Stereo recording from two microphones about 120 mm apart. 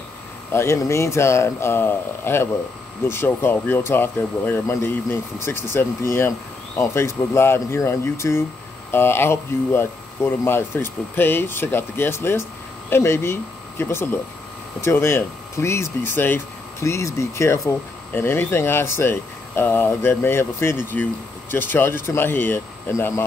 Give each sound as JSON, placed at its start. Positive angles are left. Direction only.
{"t": 0.5, "sound": "speech", "side_deg": 20}